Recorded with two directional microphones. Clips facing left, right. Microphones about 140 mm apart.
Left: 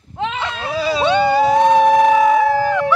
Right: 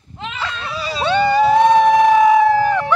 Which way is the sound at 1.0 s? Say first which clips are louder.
Right 1 dB; 15° left (ahead or behind).